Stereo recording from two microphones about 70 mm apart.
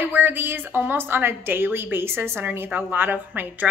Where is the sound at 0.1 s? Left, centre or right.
Right.